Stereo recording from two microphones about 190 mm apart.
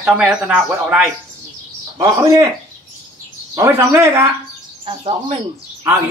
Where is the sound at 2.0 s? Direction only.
15° right (ahead or behind).